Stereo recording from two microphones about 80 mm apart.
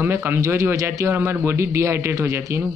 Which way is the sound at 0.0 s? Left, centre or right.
Right.